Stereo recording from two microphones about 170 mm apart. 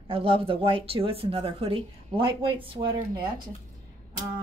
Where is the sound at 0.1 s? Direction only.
35° right (ahead or behind).